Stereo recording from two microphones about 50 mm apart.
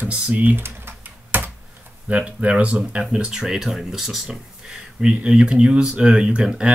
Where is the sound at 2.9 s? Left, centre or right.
Centre.